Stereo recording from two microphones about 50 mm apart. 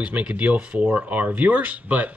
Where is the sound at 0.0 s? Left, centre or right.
Right.